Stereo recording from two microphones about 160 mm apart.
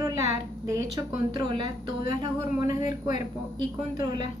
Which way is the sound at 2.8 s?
50° left (ahead or behind).